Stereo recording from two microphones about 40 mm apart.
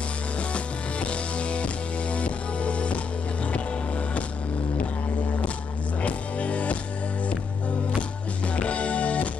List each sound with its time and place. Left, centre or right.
0.4 s music: left
6.0 s music: left
8.5 s music: left